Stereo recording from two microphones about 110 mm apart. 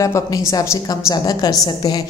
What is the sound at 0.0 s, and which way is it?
A woman's voice, 30° left (ahead or behind).